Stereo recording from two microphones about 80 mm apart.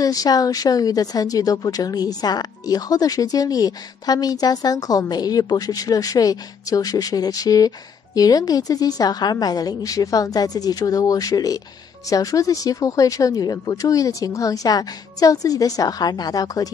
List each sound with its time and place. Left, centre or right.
0.0 s speech: left